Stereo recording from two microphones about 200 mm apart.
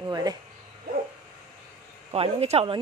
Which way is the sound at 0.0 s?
20° right (ahead or behind).